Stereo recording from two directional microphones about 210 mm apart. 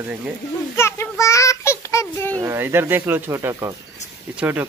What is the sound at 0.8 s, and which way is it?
Child singing, 15° left (ahead or behind).